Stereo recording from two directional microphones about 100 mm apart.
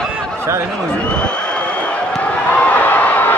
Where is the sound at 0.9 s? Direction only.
10° left (ahead or behind).